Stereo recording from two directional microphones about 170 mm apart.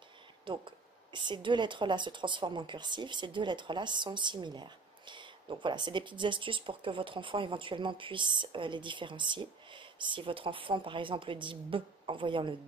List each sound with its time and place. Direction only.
0.5 s speech: 30° right (ahead or behind)